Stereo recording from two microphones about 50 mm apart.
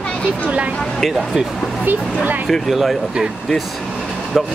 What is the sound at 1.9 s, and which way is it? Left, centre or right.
Speech, right.